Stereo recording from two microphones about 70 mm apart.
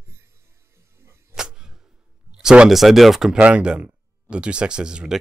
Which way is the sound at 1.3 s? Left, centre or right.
Centre.